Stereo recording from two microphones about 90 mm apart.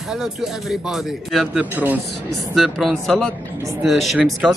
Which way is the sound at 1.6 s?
15° right (ahead or behind).